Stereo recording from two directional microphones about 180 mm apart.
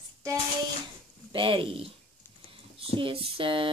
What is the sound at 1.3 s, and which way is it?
Speech, 30° right (ahead or behind).